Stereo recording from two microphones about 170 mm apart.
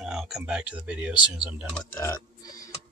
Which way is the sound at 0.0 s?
Centre (ahead or behind).